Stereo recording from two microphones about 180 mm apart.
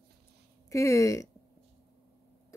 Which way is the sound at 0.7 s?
15° left (ahead or behind).